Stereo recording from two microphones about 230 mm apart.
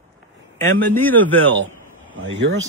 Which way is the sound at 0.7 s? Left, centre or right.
Centre.